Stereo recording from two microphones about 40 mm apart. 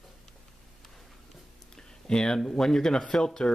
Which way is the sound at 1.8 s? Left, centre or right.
Centre.